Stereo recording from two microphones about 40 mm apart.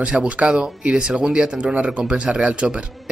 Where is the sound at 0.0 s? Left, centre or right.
Right.